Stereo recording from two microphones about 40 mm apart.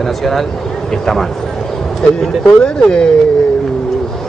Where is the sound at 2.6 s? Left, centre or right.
Left.